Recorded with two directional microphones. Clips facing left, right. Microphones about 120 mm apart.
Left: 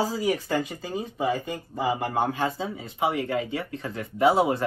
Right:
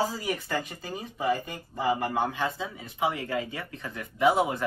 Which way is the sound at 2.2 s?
40° left (ahead or behind).